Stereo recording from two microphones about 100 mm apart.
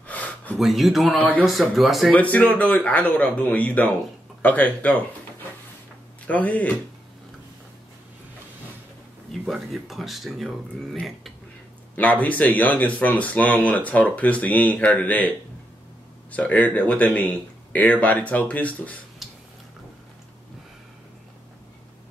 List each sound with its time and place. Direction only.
0.0 s a sound: 15° left (ahead or behind)
0.6 s speech: centre (ahead or behind)
2.1 s speech: 15° left (ahead or behind)
6.2 s speech: 15° left (ahead or behind)
9.3 s speech: centre (ahead or behind)
11.9 s speech: 15° left (ahead or behind)